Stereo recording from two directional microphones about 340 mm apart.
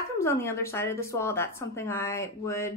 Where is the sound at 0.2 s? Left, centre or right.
Centre.